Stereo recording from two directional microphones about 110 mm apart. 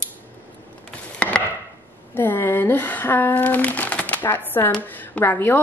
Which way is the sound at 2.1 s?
20° left (ahead or behind).